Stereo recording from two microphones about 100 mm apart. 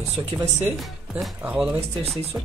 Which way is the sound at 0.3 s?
30° right (ahead or behind).